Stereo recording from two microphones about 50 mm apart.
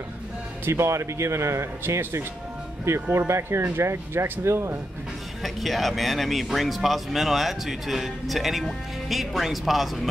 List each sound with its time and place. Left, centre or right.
0.7 s a man's voice: right
3.3 s speech: right
5.4 s speech: centre